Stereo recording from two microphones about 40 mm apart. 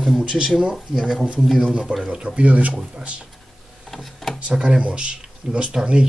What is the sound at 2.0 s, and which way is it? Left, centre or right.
Speech, right.